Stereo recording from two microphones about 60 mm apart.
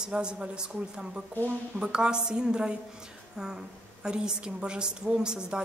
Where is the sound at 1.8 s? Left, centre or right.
Centre.